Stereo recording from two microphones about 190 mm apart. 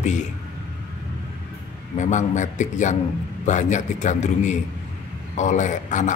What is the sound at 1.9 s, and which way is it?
A man's voice, 40° left (ahead or behind).